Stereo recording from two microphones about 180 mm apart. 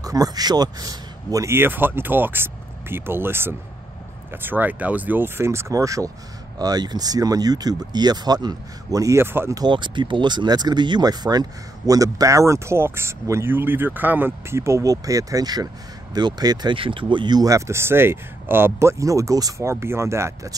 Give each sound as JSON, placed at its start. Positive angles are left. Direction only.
{"t": 0.0, "sound": "a man's voice", "side_deg": -20}